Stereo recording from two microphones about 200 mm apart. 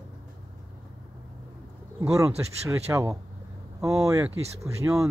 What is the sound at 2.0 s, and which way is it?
Speech, 15° right (ahead or behind).